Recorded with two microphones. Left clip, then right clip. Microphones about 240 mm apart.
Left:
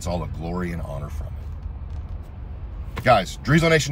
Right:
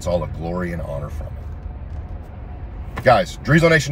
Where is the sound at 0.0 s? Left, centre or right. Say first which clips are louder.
Right 7 dB; centre.